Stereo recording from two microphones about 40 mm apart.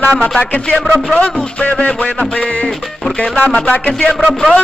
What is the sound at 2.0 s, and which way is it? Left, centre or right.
Music, left.